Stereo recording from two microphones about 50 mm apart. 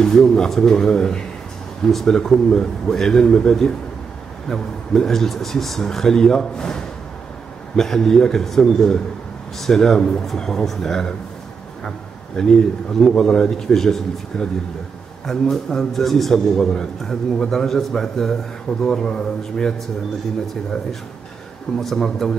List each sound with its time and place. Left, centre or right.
0.0 s speech: centre
12.4 s speech: centre
21.7 s speech: centre